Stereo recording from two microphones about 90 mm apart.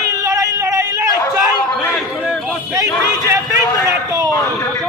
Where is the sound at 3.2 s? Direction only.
30° right (ahead or behind).